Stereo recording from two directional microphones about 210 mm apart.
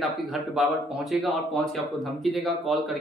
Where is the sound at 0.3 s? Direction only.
Centre (ahead or behind).